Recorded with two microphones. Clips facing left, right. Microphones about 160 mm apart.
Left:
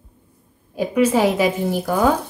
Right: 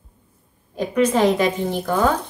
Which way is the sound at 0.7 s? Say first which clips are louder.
Left 1 dB; 10° left (ahead or behind).